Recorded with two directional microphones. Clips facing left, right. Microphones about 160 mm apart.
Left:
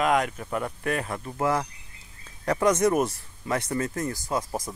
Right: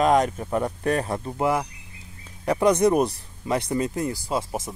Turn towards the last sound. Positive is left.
turn(degrees=-25)  # may be behind; listen again after turning